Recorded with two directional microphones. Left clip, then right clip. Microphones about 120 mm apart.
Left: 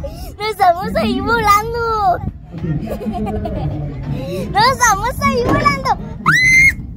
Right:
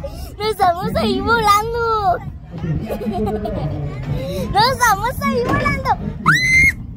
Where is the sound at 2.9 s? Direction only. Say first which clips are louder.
Right 2 dB; 20° right (ahead or behind).